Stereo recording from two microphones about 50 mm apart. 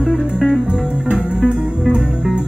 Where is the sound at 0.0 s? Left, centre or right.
Centre.